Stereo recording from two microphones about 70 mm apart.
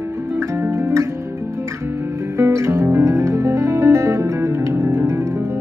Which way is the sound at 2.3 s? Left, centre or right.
Right.